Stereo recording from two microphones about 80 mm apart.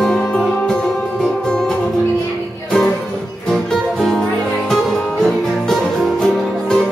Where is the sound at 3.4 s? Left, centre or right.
Centre.